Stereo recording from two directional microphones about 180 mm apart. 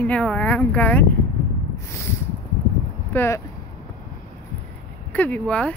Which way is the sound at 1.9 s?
15° left (ahead or behind).